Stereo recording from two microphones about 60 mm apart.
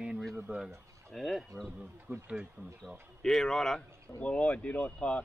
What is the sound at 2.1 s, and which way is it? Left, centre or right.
Speech, right.